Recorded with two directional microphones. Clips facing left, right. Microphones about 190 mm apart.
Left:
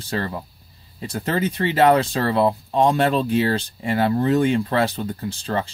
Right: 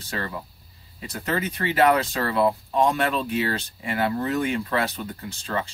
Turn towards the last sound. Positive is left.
turn(degrees=30)  # may be behind; listen again after turning